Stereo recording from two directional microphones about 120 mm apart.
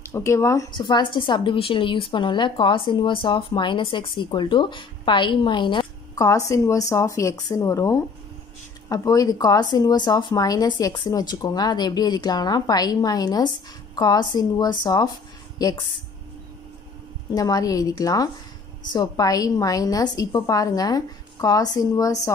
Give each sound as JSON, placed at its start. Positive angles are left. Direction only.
{"t": 0.0, "sound": "speech", "side_deg": 20}
{"t": 0.7, "sound": "a woman's voice", "side_deg": 40}
{"t": 6.2, "sound": "speech", "side_deg": 25}
{"t": 17.3, "sound": "speech", "side_deg": 30}